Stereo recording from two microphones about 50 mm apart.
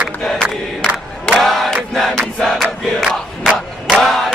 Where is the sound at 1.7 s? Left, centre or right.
Centre.